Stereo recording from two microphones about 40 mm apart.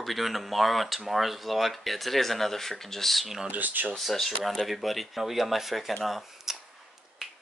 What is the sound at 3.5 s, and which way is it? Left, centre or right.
Speech, right.